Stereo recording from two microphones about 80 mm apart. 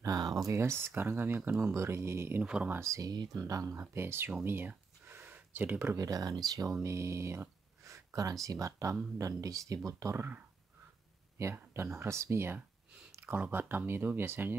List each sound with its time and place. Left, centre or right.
0.0 s a sound: right
0.5 s speech: right; by 1.7 s centre
1.7 s speech: right
2.4 s speech: centre
2.8 s speech: right
3.1 s speech: right
3.9 s speech: right
4.5 s a sound: right
5.9 s speech: right
6.8 s speech: right
10.1 s speech: right
13.2 s speech: right